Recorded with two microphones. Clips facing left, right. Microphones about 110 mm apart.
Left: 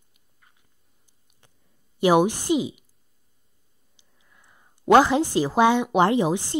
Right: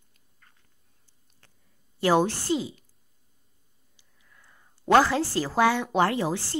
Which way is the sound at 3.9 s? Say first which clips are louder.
Left 1 dB; 20° left (ahead or behind).